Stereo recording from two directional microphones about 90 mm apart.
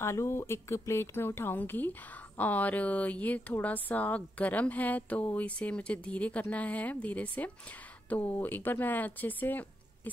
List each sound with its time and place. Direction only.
0.0 s speech: 30° left (ahead or behind)